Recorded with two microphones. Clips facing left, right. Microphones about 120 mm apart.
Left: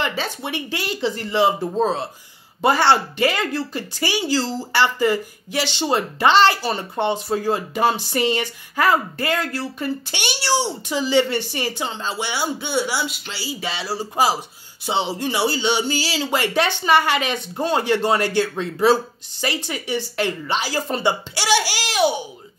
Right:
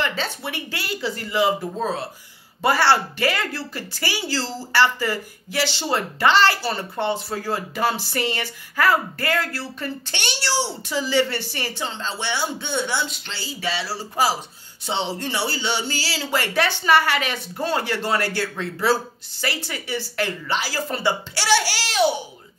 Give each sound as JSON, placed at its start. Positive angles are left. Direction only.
{"t": 0.0, "sound": "speech", "side_deg": 15}